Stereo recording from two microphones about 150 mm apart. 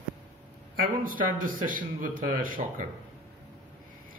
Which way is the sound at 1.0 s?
65° right (ahead or behind).